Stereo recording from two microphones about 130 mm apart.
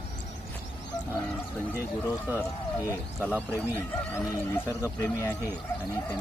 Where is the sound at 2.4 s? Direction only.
20° left (ahead or behind).